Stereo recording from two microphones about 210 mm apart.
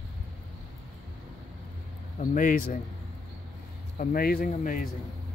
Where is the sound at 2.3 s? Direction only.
40° left (ahead or behind).